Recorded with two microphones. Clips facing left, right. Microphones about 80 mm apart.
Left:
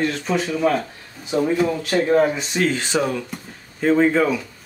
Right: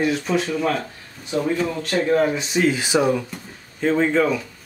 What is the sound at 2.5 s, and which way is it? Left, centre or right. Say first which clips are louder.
Speech: right 2 dB; centre.